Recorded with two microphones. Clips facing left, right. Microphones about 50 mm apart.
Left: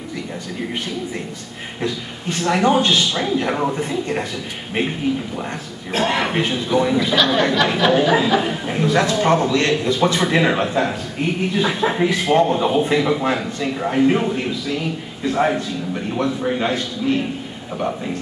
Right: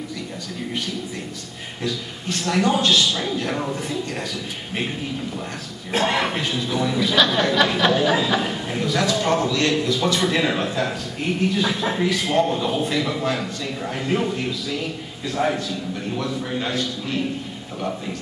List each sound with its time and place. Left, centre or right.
1.8 s a man's voice: left
3.1 s speech: centre
3.3 s a man's voice: left
5.9 s a man's voice: centre
6.3 s speech: centre
8.8 s a man's voice: left